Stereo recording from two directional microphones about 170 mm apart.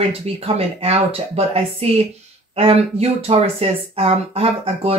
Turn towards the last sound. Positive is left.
turn(degrees=-35)  # may be behind; listen again after turning